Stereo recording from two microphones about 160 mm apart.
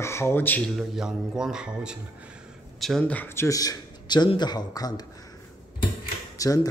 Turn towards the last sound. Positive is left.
turn(degrees=20)  # may be behind; listen again after turning